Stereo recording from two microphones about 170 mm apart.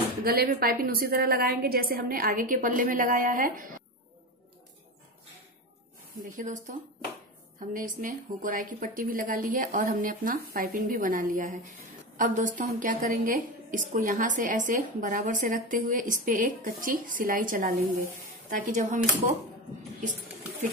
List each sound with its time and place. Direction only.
0.2 s a woman's voice: 60° right (ahead or behind)
6.3 s a woman's voice: 45° right (ahead or behind)
7.7 s a woman's voice: 50° right (ahead or behind)